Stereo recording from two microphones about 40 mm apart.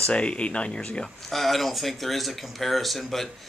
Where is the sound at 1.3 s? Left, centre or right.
Centre.